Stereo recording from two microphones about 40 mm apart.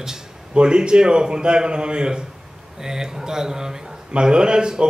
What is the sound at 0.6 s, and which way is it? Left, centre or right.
A man's voice, right.